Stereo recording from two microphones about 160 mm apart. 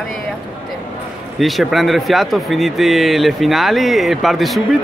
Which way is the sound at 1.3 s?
Centre (ahead or behind).